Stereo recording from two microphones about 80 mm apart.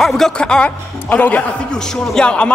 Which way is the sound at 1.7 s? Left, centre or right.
Centre.